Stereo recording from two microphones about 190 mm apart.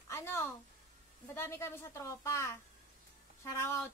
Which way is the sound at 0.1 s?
15° left (ahead or behind).